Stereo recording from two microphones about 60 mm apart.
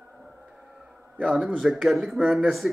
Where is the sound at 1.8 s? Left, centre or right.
Centre.